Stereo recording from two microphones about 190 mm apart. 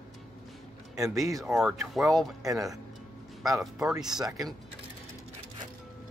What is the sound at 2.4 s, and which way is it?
Speech, 20° right (ahead or behind).